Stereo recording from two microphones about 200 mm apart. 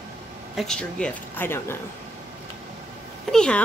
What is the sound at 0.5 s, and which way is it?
Speech, 5° left (ahead or behind).